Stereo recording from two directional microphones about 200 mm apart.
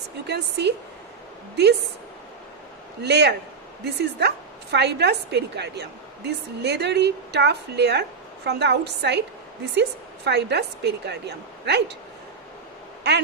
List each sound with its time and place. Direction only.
0.3 s a woman's voice: 55° right (ahead or behind)
3.0 s a woman's voice: 55° right (ahead or behind)